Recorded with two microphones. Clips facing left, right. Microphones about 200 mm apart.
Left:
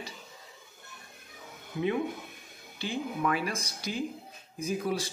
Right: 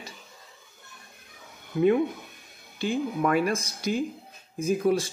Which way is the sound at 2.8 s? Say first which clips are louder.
Right 5 dB; 50° right (ahead or behind).